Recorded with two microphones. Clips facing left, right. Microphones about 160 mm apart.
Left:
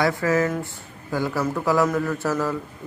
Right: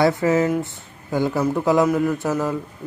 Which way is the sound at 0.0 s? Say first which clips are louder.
Right 3 dB; 20° right (ahead or behind).